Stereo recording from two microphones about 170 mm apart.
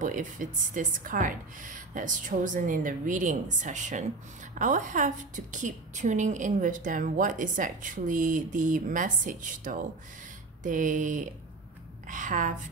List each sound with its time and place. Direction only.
0.0 s a woman's voice: 50° right (ahead or behind)